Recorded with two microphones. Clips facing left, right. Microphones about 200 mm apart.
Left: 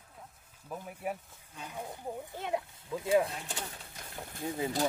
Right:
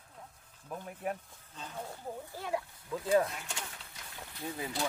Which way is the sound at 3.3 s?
35° left (ahead or behind).